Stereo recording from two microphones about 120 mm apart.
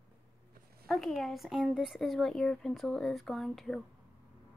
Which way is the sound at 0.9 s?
Centre (ahead or behind).